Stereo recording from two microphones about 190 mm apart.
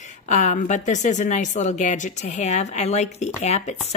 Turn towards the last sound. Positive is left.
turn(degrees=35)  # may be behind; listen again after turning